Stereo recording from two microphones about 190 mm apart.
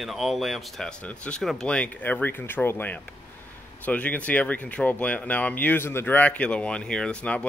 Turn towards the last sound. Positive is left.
turn(degrees=5)  # may be behind; listen again after turning